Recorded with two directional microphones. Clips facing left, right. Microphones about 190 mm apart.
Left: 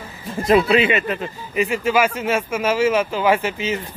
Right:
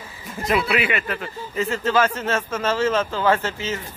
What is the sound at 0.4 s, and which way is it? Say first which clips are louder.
Speech: left 6 dB; 30° left (ahead or behind).